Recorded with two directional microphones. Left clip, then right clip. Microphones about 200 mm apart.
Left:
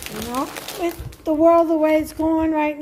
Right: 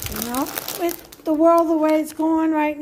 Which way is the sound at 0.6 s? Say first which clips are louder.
Right 2 dB; 50° right (ahead or behind).